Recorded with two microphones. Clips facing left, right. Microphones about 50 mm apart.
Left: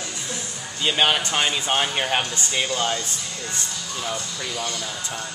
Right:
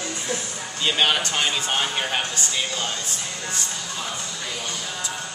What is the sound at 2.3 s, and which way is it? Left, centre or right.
Speech, left.